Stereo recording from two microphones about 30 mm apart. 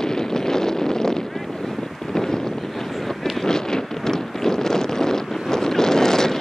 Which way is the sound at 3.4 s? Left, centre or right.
Left.